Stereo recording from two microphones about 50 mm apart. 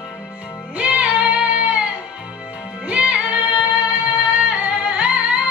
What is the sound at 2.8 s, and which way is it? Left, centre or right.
Music, right.